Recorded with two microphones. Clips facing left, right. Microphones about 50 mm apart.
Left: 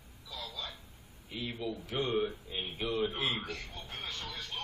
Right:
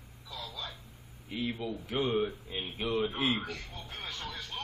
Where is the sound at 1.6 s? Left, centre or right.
Centre.